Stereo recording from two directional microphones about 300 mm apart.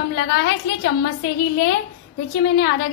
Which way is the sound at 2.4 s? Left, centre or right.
Left.